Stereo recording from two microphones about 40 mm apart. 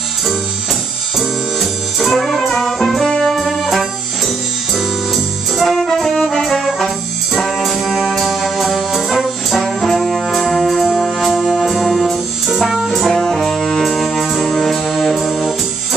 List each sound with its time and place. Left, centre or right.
1.6 s music: centre
6.4 s brass instrument: centre
7.3 s music: centre
9.5 s brass instrument: centre
11.0 s music: centre
11.3 s music: centre
14.5 s brass instrument: centre